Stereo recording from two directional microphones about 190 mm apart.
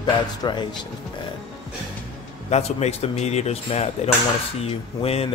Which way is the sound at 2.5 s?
35° left (ahead or behind).